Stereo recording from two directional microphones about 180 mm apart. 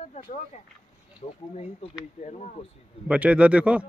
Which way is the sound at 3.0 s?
5° right (ahead or behind).